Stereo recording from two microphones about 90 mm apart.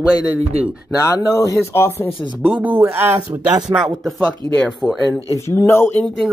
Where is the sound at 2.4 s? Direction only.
15° right (ahead or behind).